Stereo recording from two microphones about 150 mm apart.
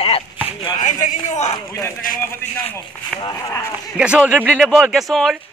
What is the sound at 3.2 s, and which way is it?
Speech, 25° left (ahead or behind).